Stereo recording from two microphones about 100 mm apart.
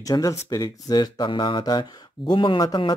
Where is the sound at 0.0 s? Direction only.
35° left (ahead or behind); by 1.6 s 55° left (ahead or behind).